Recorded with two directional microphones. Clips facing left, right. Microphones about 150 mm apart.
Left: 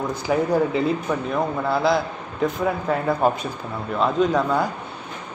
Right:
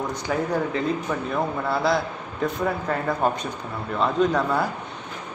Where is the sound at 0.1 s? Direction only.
10° left (ahead or behind).